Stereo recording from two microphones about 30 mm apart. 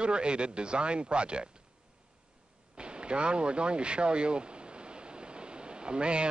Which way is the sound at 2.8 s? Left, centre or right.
Right.